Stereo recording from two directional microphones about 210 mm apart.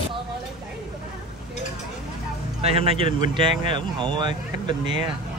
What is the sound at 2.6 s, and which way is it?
Speech, 30° right (ahead or behind).